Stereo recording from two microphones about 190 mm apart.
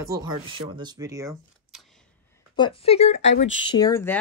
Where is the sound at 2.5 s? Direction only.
30° left (ahead or behind).